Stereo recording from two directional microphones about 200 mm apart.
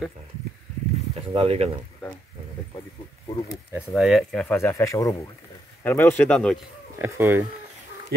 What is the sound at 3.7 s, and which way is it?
Speech, 5° right (ahead or behind).